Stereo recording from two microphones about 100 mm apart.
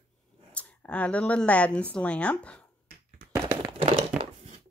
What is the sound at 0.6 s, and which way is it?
Speech, 15° left (ahead or behind).